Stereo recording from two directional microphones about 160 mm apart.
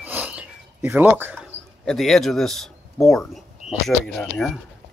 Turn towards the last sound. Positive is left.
turn(degrees=5)  # may be behind; listen again after turning